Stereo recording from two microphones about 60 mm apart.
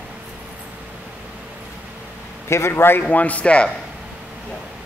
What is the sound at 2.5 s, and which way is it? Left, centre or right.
Speech, left.